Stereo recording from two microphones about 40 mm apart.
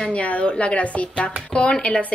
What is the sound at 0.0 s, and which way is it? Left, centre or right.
A woman's voice, left.